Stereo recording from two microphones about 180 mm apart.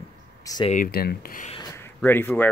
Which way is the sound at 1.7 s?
10° left (ahead or behind).